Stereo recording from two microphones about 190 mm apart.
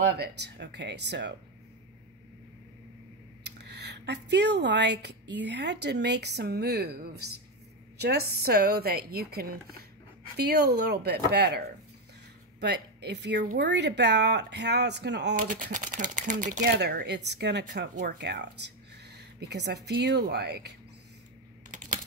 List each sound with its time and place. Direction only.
0.0 s speech: 60° right (ahead or behind)
3.4 s speech: 65° right (ahead or behind)
15.3 s speech: 45° right (ahead or behind)
16.6 s speech: 60° right (ahead or behind)
21.6 s computer keyboard: 45° right (ahead or behind)